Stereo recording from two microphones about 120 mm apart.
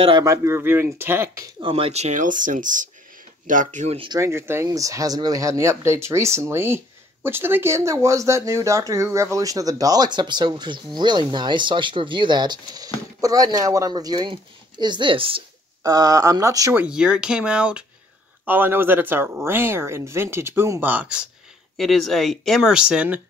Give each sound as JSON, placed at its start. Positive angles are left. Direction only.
{"t": 0.2, "sound": "speech", "side_deg": -25}
{"t": 1.6, "sound": "speech", "side_deg": -50}
{"t": 4.2, "sound": "speech", "side_deg": -20}
{"t": 15.8, "sound": "speech", "side_deg": -30}
{"t": 16.7, "sound": "speech", "side_deg": -10}
{"t": 21.7, "sound": "speech", "side_deg": 0}